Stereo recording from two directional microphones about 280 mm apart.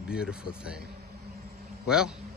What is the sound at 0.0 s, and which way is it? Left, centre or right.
Speech, centre.